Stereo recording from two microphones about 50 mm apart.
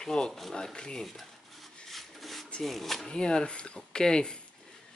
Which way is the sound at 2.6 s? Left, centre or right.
Centre.